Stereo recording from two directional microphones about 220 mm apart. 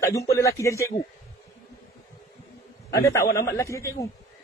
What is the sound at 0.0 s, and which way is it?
Speech, 15° left (ahead or behind).